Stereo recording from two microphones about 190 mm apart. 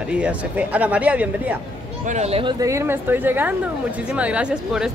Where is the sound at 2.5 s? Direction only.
15° right (ahead or behind).